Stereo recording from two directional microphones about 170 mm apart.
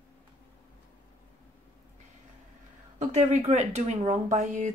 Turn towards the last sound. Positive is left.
turn(degrees=-45)  # may be behind; listen again after turning